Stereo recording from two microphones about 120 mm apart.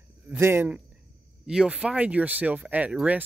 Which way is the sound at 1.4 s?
5° right (ahead or behind).